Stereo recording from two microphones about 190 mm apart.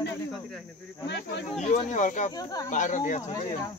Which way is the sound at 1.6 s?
35° left (ahead or behind).